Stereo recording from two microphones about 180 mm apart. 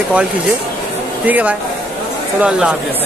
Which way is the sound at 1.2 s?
10° right (ahead or behind).